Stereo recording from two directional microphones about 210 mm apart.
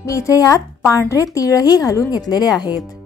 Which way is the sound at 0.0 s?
15° left (ahead or behind).